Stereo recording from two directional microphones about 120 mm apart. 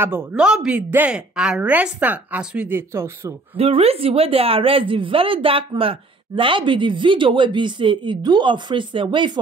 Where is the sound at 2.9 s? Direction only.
20° right (ahead or behind).